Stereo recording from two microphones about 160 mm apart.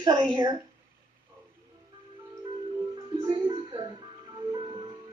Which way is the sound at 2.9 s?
25° right (ahead or behind).